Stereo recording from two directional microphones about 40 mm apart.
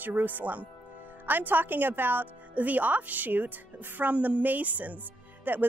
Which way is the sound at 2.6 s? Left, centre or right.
Right.